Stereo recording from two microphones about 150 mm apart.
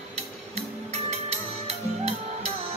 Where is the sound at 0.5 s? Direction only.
45° right (ahead or behind).